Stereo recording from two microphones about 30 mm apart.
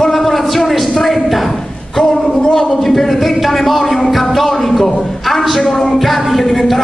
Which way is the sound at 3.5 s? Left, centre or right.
Centre.